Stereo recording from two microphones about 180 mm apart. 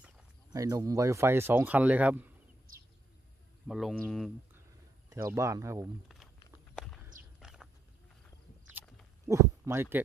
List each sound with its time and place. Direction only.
0.5 s speech: 20° right (ahead or behind)
3.6 s speech: centre (ahead or behind)
5.1 s speech: 15° right (ahead or behind)
6.7 s walk: centre (ahead or behind)
9.3 s speech: 15° right (ahead or behind)